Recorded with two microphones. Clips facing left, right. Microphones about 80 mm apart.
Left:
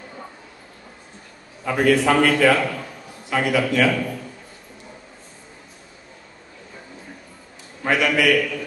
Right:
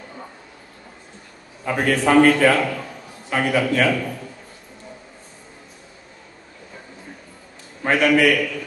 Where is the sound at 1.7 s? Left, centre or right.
Right.